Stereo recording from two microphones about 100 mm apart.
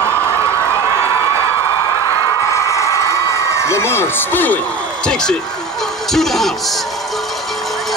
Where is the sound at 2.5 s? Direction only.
30° left (ahead or behind); by 5.4 s 5° left (ahead or behind).